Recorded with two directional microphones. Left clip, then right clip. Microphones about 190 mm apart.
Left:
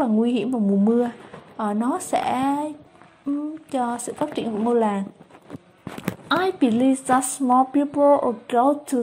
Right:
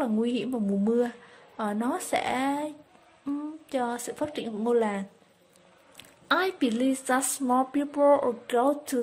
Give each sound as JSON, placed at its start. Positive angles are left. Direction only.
{"t": 0.0, "sound": "speech", "side_deg": -15}
{"t": 3.7, "sound": "speech", "side_deg": -15}
{"t": 6.2, "sound": "speech", "side_deg": -15}